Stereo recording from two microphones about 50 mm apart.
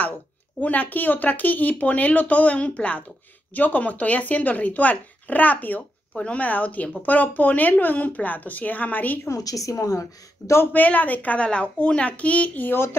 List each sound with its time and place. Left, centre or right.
0.6 s speech: left
5.8 s speech: left
6.4 s speech: left
9.3 s a woman's voice: left
10.6 s a child's voice: left
12.6 s speech: left